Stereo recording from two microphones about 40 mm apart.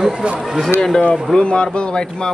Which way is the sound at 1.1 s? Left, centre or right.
Centre.